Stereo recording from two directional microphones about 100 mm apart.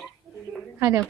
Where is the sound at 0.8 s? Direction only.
30° right (ahead or behind).